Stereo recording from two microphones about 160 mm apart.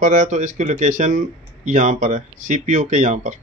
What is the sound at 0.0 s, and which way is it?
Speech, 50° right (ahead or behind).